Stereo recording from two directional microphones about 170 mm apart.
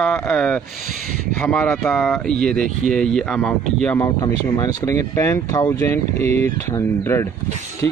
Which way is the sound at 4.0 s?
20° left (ahead or behind).